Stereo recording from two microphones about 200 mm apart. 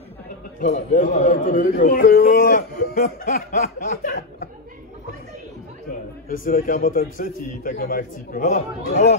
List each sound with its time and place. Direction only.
0.6 s a man's voice: 40° left (ahead or behind)
6.2 s a man's voice: 45° left (ahead or behind)